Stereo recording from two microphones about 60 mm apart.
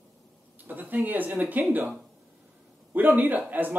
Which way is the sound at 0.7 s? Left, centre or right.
Right.